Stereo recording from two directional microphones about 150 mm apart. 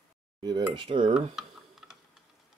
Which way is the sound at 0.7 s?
35° right (ahead or behind).